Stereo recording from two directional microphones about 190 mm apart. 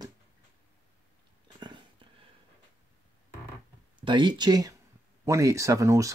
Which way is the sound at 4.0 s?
25° right (ahead or behind).